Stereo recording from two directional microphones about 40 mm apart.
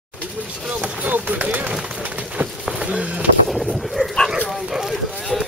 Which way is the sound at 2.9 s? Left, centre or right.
Right.